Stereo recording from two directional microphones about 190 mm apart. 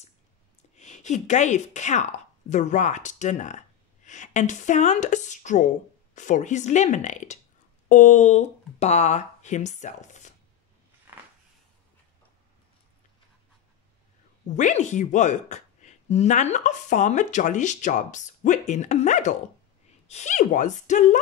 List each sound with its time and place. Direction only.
0.7 s speech: 40° left (ahead or behind)
14.6 s speech: 40° left (ahead or behind)